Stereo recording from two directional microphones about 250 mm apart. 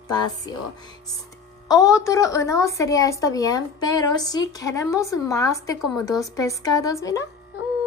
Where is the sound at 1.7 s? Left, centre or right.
Centre.